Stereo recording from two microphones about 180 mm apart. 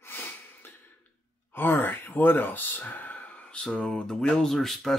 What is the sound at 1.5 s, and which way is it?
Speech, 10° left (ahead or behind).